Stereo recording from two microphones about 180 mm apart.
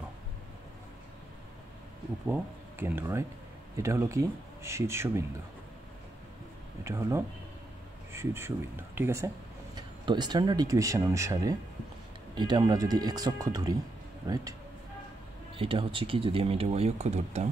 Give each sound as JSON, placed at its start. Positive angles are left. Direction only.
{"t": 2.2, "sound": "speech", "side_deg": -10}
{"t": 6.8, "sound": "speech", "side_deg": -15}
{"t": 15.5, "sound": "speech", "side_deg": -30}